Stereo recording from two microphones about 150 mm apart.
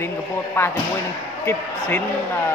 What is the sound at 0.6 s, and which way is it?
Speech, 15° left (ahead or behind).